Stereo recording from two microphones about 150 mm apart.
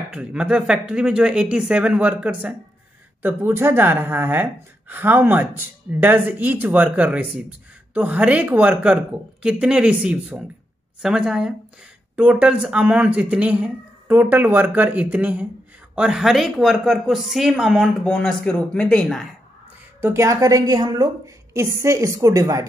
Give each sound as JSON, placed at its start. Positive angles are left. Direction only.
{"t": 0.1, "sound": "speech", "side_deg": -5}
{"t": 20.0, "sound": "a woman's voice", "side_deg": -20}